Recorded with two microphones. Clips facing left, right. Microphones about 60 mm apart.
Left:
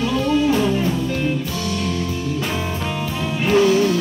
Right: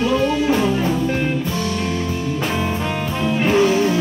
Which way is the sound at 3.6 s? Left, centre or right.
Right.